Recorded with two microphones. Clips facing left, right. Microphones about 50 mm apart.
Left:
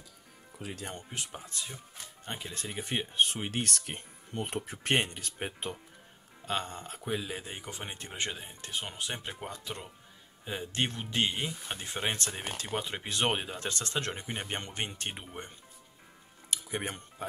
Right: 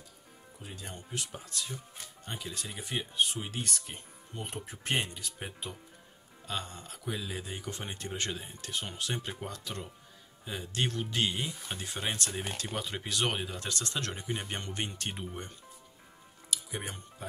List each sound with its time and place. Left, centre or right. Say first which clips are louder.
0.6 s speech: left 6 dB; left
1.1 s speech: right 1 dB; left
2.2 s speech: left 1 dB; left
3.7 s speech: left 3 dB; left; by 9.8 s centre
10.4 s speech: left 1 dB; left
16.4 s music: left 3 dB; left